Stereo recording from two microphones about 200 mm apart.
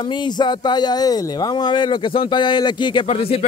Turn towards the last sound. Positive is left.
turn(degrees=30)  # may be behind; listen again after turning